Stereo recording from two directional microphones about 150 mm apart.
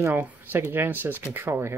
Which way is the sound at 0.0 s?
15° right (ahead or behind).